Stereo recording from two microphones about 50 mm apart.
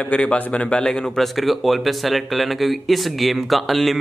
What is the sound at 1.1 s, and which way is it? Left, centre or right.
A man's voice, centre.